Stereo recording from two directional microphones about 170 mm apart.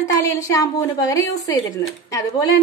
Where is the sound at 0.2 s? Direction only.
15° left (ahead or behind).